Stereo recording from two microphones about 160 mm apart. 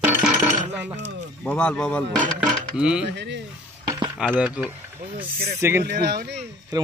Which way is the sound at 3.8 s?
25° right (ahead or behind).